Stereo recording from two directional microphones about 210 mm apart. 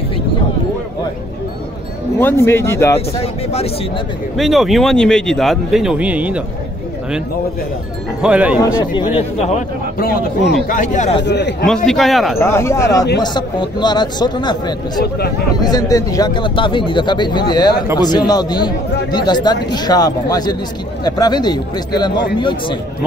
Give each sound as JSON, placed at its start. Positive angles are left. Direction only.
{"t": 2.1, "sound": "speech", "side_deg": 10}
{"t": 3.2, "sound": "speech", "side_deg": 30}
{"t": 4.4, "sound": "speech", "side_deg": 0}
{"t": 8.2, "sound": "speech", "side_deg": -5}
{"t": 9.0, "sound": "a man's voice", "side_deg": 30}
{"t": 9.9, "sound": "a man's voice", "side_deg": 45}
{"t": 11.2, "sound": "a man's voice", "side_deg": 55}
{"t": 11.6, "sound": "speech", "side_deg": 0}
{"t": 12.4, "sound": "speech", "side_deg": 10}